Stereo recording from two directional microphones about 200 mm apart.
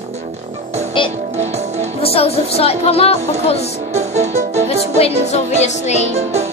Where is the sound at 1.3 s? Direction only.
35° right (ahead or behind).